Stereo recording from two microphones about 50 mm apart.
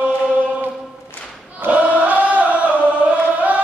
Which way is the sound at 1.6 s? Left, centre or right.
Right.